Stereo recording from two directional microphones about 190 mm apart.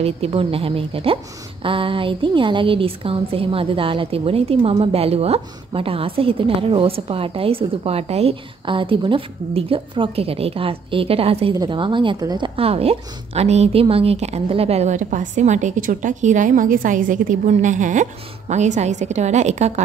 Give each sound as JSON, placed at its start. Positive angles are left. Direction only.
{"t": 0.0, "sound": "a woman's voice", "side_deg": -30}